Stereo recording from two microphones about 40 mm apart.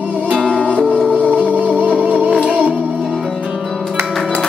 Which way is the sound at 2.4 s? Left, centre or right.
Right.